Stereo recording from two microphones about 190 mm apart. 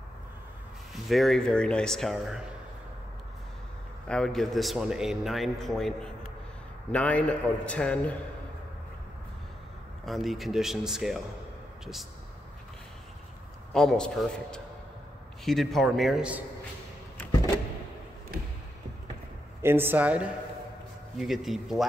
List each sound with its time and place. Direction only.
1.0 s a man's voice: centre (ahead or behind)
4.1 s a man's voice: 5° left (ahead or behind)
10.0 s a man's voice: centre (ahead or behind)
13.7 s a man's voice: 5° left (ahead or behind)
19.6 s a man's voice: 10° right (ahead or behind)